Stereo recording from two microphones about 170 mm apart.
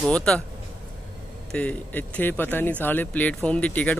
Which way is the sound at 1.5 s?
10° left (ahead or behind).